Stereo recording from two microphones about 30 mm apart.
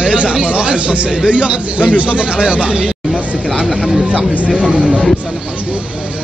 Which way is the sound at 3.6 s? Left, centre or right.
Centre.